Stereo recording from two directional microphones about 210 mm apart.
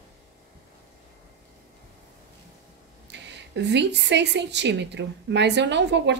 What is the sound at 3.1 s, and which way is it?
A woman's voice, 55° right (ahead or behind).